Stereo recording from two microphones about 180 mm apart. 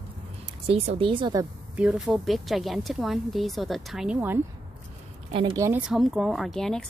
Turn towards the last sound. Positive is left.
turn(degrees=5)  # may be behind; listen again after turning